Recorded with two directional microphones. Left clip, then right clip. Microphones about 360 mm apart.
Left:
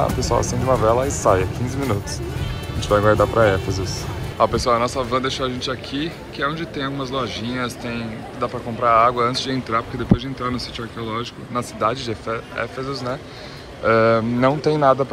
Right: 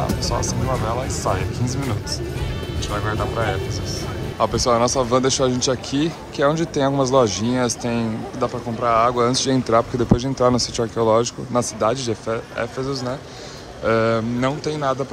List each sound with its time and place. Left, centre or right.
0.2 s speech: centre